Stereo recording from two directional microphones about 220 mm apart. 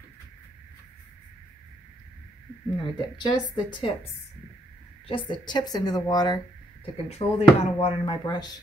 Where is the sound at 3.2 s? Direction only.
20° left (ahead or behind).